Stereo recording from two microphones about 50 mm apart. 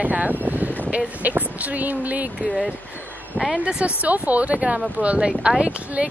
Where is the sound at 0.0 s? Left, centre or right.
Right.